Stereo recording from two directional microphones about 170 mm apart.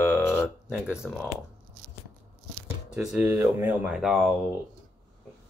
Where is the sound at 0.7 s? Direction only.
5° right (ahead or behind).